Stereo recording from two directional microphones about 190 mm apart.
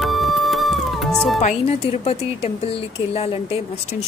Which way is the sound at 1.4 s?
35° left (ahead or behind).